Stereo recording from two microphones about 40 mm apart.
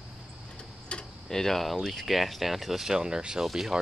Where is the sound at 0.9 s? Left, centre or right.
Left.